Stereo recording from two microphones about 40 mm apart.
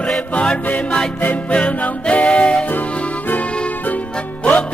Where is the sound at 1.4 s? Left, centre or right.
Left.